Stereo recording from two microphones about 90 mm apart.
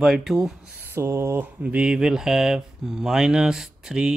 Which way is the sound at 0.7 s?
25° right (ahead or behind).